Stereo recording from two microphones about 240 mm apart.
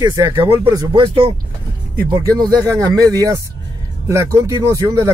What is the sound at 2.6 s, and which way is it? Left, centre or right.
Speech, centre.